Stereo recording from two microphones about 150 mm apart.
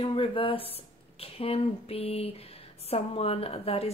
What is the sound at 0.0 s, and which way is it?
Speech, 35° left (ahead or behind).